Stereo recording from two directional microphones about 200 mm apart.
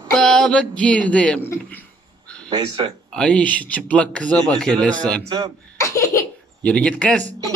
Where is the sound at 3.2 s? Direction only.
5° left (ahead or behind).